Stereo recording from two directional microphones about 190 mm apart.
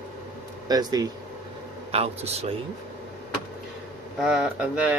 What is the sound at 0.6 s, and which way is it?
Speech, 20° right (ahead or behind).